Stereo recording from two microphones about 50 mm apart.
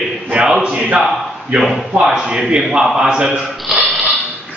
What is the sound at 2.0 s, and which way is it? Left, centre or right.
A man's voice, centre.